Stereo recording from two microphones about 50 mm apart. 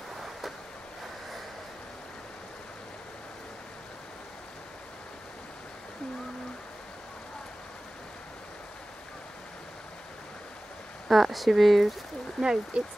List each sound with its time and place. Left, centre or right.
11.1 s speech: centre
12.4 s speech: centre